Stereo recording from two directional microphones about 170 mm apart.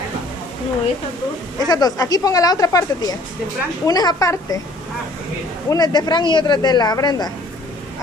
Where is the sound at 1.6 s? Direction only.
25° left (ahead or behind).